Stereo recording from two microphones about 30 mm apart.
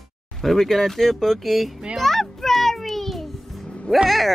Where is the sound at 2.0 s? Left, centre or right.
Centre.